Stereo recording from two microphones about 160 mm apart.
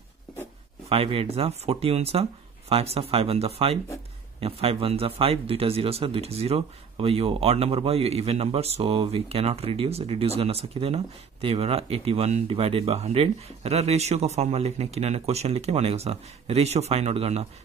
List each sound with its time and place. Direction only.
0.8 s a man's voice: 35° right (ahead or behind)